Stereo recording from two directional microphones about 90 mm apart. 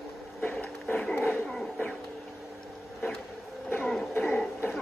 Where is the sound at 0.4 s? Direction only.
20° left (ahead or behind).